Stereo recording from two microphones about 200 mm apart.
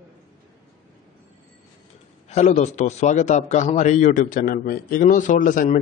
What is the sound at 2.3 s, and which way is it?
A man's voice, 35° left (ahead or behind).